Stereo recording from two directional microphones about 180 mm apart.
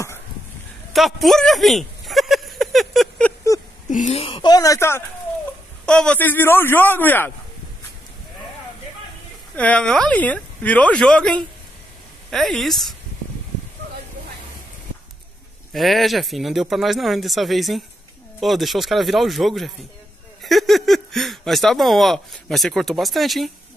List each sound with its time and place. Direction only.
0.9 s a sound: centre (ahead or behind)
3.9 s speech: 40° left (ahead or behind); by 7.3 s 10° left (ahead or behind)
9.6 s speech: 5° left (ahead or behind)
15.7 s speech: centre (ahead or behind)